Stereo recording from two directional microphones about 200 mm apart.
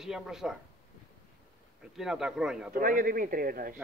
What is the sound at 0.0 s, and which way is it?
Speech, centre (ahead or behind).